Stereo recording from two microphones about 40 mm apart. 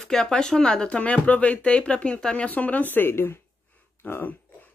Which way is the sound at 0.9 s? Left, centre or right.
Left.